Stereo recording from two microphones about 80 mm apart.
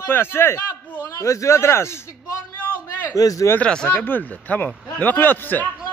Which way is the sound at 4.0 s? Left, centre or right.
Left.